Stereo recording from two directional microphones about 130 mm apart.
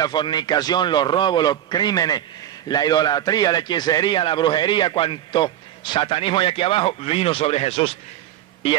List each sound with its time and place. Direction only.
0.0 s a man's voice: 35° left (ahead or behind)